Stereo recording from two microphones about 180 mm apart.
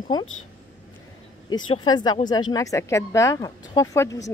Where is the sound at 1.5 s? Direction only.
25° left (ahead or behind).